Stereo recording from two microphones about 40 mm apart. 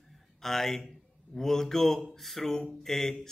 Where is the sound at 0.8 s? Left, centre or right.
Centre.